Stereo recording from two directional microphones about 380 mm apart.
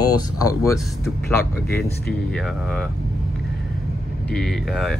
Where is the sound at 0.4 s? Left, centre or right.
Centre.